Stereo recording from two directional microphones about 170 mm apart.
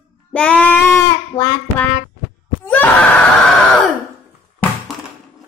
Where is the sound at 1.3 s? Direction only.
15° left (ahead or behind).